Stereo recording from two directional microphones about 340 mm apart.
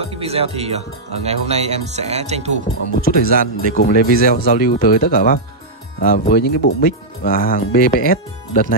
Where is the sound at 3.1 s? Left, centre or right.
Left.